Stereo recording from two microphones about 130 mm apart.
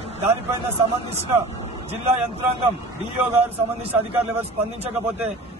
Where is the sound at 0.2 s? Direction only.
55° right (ahead or behind).